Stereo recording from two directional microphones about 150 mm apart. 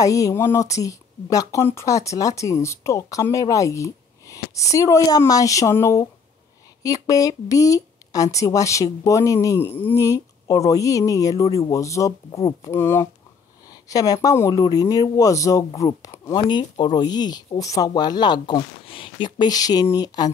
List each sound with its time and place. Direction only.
0.0 s a woman's voice: 20° left (ahead or behind)